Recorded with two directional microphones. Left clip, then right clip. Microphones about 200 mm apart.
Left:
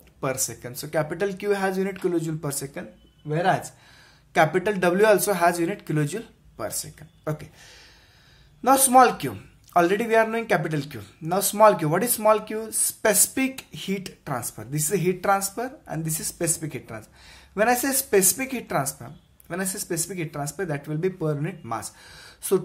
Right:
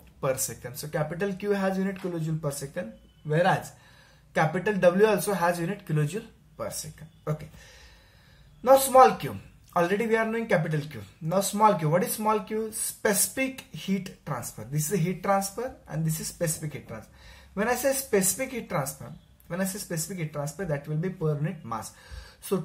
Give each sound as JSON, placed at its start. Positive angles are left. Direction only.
{"t": 0.2, "sound": "a man's voice", "side_deg": 35}
{"t": 3.3, "sound": "speech", "side_deg": 25}
{"t": 4.3, "sound": "a man's voice", "side_deg": 40}
{"t": 8.6, "sound": "a man's voice", "side_deg": 50}